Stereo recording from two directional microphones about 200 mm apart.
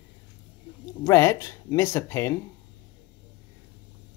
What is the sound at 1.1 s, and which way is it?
Speech, 15° left (ahead or behind).